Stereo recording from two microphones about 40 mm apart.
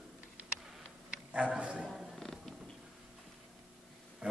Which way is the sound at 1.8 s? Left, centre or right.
Centre.